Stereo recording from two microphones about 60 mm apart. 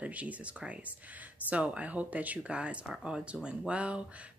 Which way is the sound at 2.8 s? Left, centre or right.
Centre.